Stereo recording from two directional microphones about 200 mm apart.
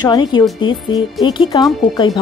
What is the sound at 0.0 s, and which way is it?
Speech, 20° left (ahead or behind).